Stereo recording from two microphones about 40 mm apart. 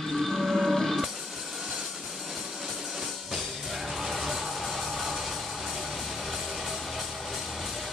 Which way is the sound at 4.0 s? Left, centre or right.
Centre.